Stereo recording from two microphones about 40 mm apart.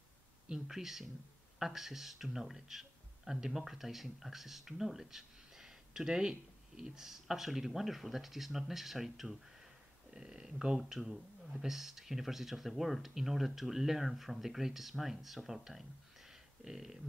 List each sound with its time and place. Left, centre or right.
0.5 s a man's voice: centre
10.1 s speech: centre
10.9 s speech: centre